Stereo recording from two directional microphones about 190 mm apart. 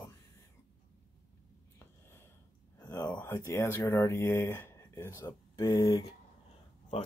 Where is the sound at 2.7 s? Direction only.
15° left (ahead or behind).